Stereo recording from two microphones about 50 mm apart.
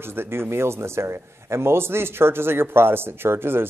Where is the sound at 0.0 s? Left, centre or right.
Right.